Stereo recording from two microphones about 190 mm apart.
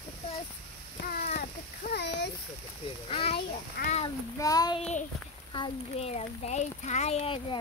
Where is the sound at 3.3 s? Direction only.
55° left (ahead or behind).